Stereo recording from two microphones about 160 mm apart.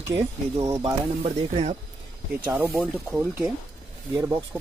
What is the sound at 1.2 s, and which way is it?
Speech, 40° right (ahead or behind).